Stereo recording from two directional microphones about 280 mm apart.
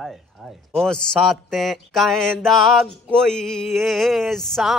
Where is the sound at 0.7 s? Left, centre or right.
Centre.